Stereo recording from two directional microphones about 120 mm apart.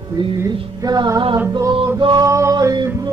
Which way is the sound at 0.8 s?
35° right (ahead or behind).